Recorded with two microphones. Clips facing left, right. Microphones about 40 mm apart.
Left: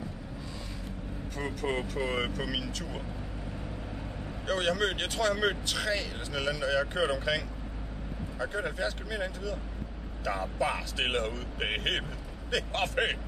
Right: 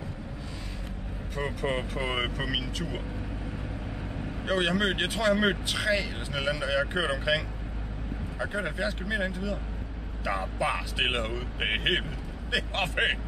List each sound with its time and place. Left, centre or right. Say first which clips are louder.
1.3 s speech: right 3 dB; right
4.5 s speech: right 2 dB; centre